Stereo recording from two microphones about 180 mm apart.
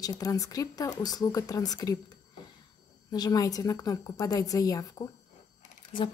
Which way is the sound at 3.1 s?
20° left (ahead or behind).